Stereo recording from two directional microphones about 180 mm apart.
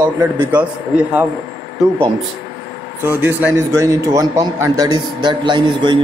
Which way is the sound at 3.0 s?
10° right (ahead or behind).